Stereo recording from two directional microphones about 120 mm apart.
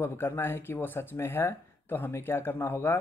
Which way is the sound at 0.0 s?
20° left (ahead or behind).